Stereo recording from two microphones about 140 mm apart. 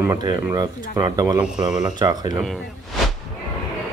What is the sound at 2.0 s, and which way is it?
Speech, 30° right (ahead or behind).